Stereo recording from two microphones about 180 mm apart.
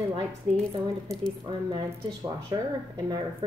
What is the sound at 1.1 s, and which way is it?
A woman's voice, 15° right (ahead or behind).